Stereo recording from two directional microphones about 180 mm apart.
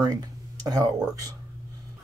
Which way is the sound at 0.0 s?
20° right (ahead or behind).